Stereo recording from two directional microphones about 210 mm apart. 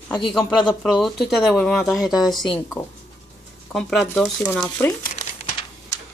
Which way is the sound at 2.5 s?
15° left (ahead or behind).